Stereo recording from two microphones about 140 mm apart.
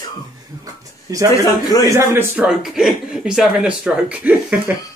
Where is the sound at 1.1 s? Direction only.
25° right (ahead or behind).